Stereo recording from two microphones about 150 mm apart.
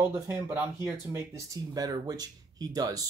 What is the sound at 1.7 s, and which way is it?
Speech, 25° right (ahead or behind).